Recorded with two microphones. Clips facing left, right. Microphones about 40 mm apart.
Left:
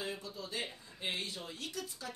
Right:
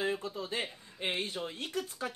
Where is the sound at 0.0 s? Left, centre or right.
Right.